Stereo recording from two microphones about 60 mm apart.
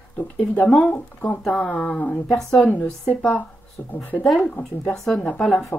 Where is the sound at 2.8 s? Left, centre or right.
Centre.